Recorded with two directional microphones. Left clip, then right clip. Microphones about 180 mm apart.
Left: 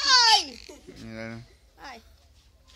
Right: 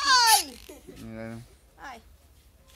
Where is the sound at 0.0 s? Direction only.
15° left (ahead or behind).